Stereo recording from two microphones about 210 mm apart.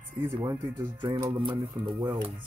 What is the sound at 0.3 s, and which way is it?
Speech, 20° right (ahead or behind).